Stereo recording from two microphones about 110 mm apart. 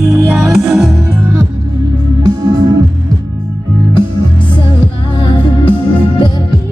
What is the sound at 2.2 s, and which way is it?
Music, 40° right (ahead or behind).